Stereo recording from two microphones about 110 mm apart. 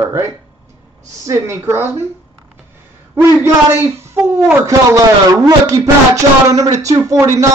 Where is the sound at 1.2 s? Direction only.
25° right (ahead or behind).